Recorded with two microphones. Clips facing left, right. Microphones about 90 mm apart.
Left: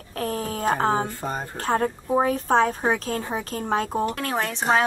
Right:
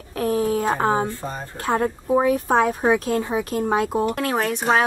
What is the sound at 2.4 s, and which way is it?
Speech, 10° right (ahead or behind).